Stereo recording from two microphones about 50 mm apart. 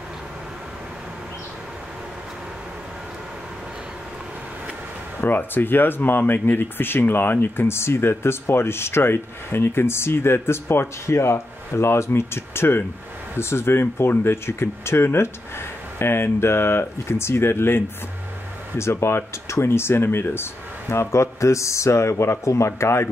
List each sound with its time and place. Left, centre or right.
5.2 s speech: left
18.8 s speech: left
20.9 s speech: left
22.7 s speech: left